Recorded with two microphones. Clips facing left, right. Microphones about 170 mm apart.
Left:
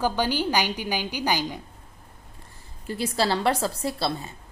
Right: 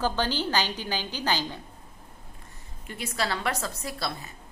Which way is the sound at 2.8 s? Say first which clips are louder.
Left 6 dB; 30° left (ahead or behind).